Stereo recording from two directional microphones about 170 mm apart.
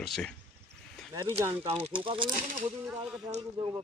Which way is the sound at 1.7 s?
35° right (ahead or behind).